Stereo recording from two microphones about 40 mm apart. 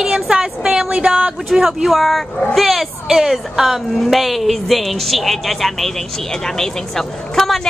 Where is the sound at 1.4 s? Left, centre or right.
Centre.